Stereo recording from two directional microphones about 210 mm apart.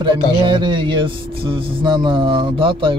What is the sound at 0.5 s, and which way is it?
Speech, 20° right (ahead or behind).